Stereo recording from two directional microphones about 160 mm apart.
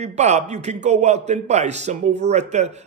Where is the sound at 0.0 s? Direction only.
45° right (ahead or behind).